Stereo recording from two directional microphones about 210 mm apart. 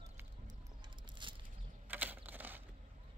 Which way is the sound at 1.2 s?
20° right (ahead or behind).